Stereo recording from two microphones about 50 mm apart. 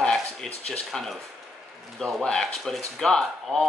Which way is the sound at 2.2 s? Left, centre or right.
Centre.